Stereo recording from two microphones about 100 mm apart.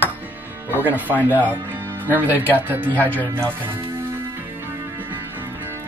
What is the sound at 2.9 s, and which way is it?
Speech, 15° left (ahead or behind).